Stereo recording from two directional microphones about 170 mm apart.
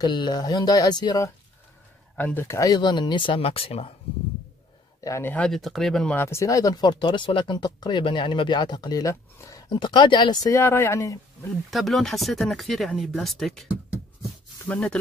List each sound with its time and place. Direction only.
0.0 s speech: 25° left (ahead or behind)
2.1 s speech: 10° left (ahead or behind); by 3.9 s 35° left (ahead or behind)
5.0 s speech: 15° left (ahead or behind)
11.7 s speech: centre (ahead or behind)
14.7 s speech: 5° left (ahead or behind)